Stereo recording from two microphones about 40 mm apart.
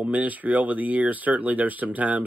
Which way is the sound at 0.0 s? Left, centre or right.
Right.